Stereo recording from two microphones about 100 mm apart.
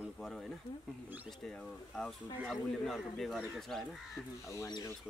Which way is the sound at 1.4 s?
5° left (ahead or behind).